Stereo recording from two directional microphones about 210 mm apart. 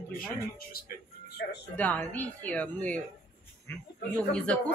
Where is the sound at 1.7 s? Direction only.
5° left (ahead or behind).